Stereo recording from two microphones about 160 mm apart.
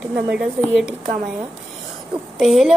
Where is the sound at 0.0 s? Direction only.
5° right (ahead or behind).